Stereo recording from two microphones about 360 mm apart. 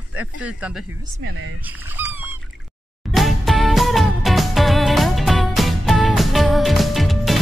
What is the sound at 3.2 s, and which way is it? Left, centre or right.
Music, centre.